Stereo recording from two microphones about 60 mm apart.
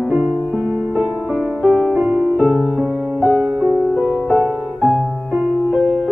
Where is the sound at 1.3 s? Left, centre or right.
Centre.